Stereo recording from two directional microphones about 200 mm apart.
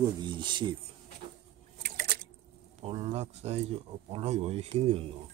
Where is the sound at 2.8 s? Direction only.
30° right (ahead or behind).